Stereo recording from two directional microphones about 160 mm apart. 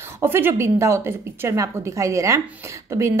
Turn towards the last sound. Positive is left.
turn(degrees=-20)  # may be behind; listen again after turning